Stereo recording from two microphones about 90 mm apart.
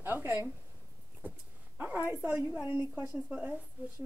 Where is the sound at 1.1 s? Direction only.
15° right (ahead or behind).